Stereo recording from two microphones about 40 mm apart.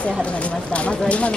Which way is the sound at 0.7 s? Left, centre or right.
Left.